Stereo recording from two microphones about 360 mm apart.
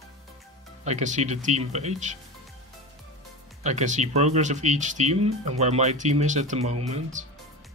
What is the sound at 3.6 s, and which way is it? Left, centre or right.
Speech, centre.